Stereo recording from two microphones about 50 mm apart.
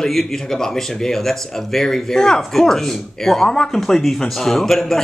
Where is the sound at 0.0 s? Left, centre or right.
Centre.